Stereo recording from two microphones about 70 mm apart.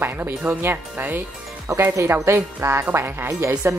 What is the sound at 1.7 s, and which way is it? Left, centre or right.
A woman's voice, right.